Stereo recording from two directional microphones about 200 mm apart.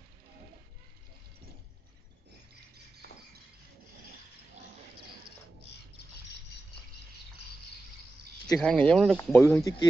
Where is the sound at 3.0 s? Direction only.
55° right (ahead or behind).